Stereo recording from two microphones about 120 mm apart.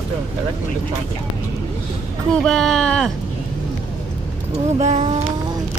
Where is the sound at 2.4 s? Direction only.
5° left (ahead or behind).